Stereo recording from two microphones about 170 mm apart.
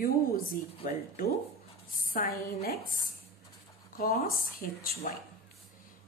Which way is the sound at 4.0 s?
60° left (ahead or behind).